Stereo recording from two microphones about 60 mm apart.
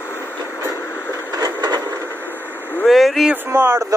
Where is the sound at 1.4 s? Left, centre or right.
Right.